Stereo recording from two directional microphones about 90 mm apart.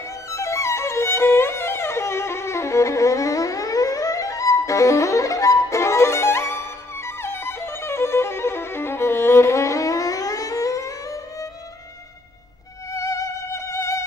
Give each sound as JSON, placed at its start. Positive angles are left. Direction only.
{"t": 0.3, "sound": "music", "side_deg": 35}
{"t": 12.9, "sound": "music", "side_deg": 35}